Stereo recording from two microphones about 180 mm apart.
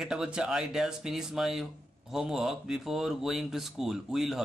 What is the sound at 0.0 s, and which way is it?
Speech, 5° right (ahead or behind).